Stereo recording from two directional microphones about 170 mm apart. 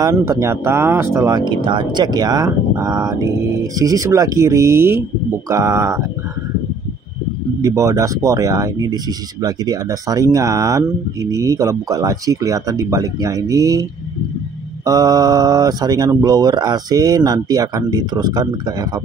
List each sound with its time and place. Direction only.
0.0 s speech: 20° right (ahead or behind)
7.6 s speech: 20° right (ahead or behind)
14.9 s speech: 20° right (ahead or behind)